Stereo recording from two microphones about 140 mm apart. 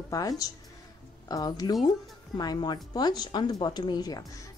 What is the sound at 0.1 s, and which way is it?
Speech, 25° left (ahead or behind).